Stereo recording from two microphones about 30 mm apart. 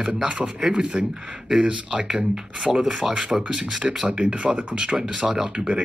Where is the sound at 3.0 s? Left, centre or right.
Centre.